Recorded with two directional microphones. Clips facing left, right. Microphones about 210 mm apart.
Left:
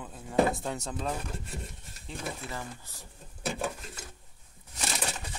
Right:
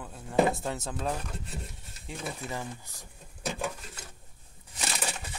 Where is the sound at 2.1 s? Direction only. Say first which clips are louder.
Right 1 dB; 15° right (ahead or behind).